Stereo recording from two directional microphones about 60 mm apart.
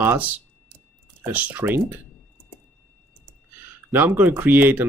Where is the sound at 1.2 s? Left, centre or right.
Right.